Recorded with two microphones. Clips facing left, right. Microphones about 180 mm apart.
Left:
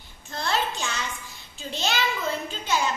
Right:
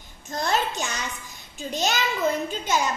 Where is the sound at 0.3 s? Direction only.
45° right (ahead or behind).